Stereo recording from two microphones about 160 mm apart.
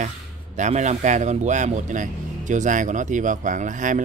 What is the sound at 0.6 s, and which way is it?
Speech, 50° right (ahead or behind).